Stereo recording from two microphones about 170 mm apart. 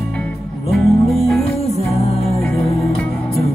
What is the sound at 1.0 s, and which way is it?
Music, centre (ahead or behind).